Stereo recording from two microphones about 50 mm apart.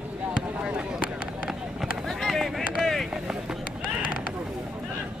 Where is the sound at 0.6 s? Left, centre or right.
Centre.